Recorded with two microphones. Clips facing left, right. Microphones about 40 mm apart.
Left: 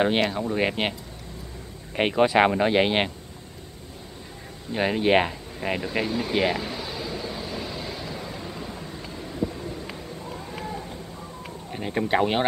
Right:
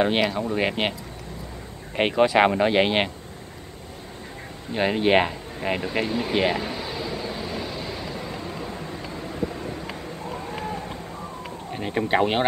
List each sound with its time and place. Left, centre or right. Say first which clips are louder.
0.0 s speech: right 1 dB; centre
2.0 s speech: right 1 dB; centre
4.7 s a sound: right 1 dB; centre
11.7 s speech: right 1 dB; centre